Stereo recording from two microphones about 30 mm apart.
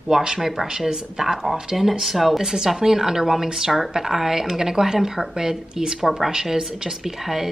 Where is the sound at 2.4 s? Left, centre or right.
Centre.